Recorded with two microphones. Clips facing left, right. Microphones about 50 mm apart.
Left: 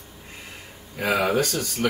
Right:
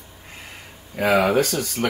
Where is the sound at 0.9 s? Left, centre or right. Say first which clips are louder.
Right 4 dB; centre.